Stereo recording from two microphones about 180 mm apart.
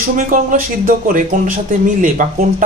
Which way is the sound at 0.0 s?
50° right (ahead or behind).